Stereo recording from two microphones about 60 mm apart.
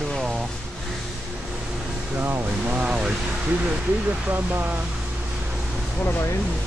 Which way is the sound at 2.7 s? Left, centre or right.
Centre.